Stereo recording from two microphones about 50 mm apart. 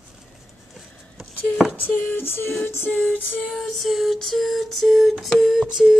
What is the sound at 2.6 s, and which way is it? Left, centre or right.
Music, left.